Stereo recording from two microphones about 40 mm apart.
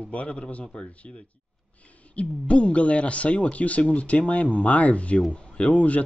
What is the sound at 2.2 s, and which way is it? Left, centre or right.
Speech, left.